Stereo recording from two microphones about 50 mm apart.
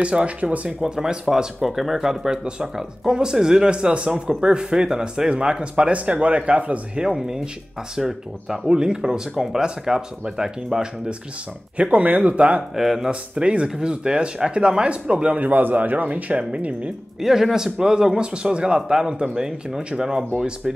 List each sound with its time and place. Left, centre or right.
0.0 s speech: right
0.8 s speech: centre
7.0 s speech: centre
11.7 s speech: right
12.7 s speech: centre
13.1 s speech: right
17.2 s speech: centre